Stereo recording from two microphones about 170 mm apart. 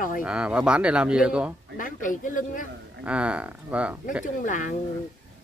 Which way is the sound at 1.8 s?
50° left (ahead or behind).